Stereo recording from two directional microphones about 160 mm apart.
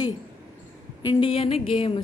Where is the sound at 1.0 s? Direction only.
35° left (ahead or behind).